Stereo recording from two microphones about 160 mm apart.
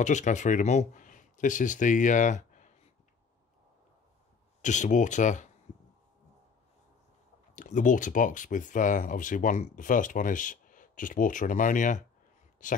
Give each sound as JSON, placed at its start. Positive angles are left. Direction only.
{"t": 0.0, "sound": "speech", "side_deg": 50}
{"t": 4.6, "sound": "speech", "side_deg": 50}
{"t": 7.5, "sound": "speech", "side_deg": 55}